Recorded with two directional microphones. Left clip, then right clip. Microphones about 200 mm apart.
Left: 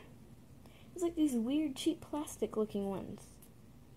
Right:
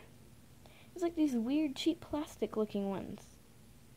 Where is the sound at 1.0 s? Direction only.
10° right (ahead or behind).